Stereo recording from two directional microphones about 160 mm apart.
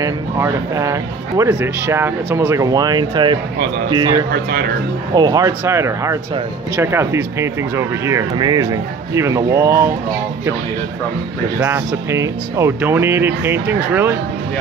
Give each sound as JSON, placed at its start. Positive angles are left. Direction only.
{"t": 0.0, "sound": "speech", "side_deg": -20}
{"t": 4.3, "sound": "speech", "side_deg": -90}
{"t": 5.1, "sound": "speech", "side_deg": -25}
{"t": 11.6, "sound": "speech", "side_deg": -15}